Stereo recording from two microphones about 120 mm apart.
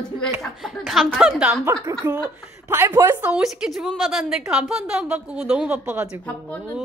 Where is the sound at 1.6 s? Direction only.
25° right (ahead or behind).